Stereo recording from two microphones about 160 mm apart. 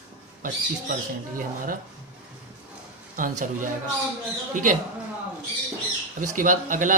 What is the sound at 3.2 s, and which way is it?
Speech, 55° right (ahead or behind).